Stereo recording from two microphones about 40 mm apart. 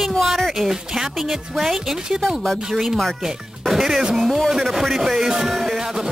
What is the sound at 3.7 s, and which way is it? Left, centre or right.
Music, centre.